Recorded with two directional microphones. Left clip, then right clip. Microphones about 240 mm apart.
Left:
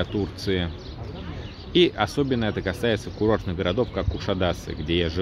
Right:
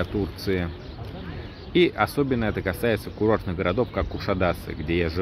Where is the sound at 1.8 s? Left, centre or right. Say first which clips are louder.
Even; centre.